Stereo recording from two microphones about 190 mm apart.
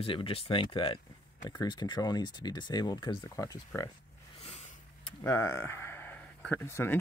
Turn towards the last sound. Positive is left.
turn(degrees=10)  # may be behind; listen again after turning